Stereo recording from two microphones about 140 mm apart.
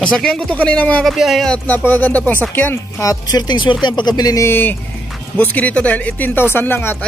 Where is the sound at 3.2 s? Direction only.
30° left (ahead or behind).